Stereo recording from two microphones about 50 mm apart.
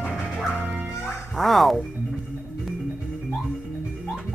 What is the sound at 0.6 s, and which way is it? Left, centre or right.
Music, right.